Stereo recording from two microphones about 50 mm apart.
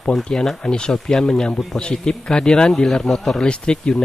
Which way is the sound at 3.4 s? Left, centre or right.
Centre.